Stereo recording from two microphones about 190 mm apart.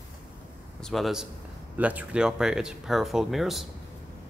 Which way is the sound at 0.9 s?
Centre (ahead or behind).